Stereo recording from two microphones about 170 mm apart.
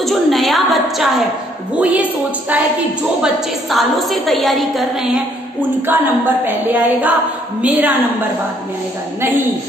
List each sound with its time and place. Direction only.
0.0 s a sound: centre (ahead or behind)
1.8 s a woman's voice: 10° right (ahead or behind)
3.2 s a woman's voice: centre (ahead or behind)
5.6 s a woman's voice: 10° right (ahead or behind)